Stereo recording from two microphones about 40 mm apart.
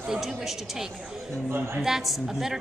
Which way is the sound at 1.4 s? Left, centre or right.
Right.